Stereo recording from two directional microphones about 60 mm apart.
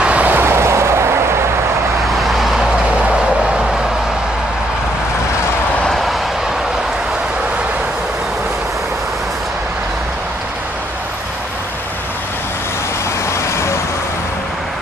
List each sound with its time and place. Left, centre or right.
0.0 s vehicle: right
0.3 s vehicle: right
2.2 s vehicle: centre